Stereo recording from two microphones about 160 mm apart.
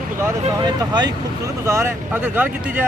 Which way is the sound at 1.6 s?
15° right (ahead or behind).